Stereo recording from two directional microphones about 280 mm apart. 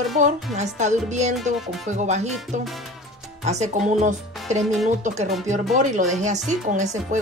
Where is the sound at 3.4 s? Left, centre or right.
Right.